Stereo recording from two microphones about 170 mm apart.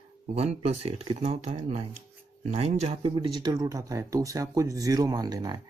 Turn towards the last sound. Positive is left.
turn(degrees=-25)  # may be behind; listen again after turning